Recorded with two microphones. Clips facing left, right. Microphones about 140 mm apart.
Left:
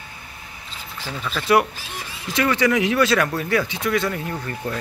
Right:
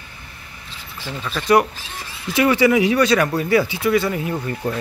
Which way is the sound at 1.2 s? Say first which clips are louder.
Right 2 dB; centre (ahead or behind).